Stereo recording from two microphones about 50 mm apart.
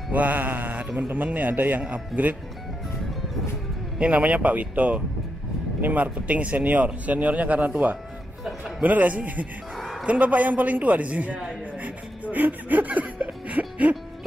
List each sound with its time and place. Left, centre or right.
0.1 s music: right
0.9 s a man's voice: right
4.0 s a man's voice: right
8.5 s music: centre
8.8 s a man's voice: right
11.8 s music: right